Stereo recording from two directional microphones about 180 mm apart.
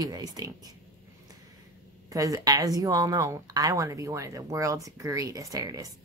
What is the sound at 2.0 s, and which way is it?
Speech, 15° right (ahead or behind).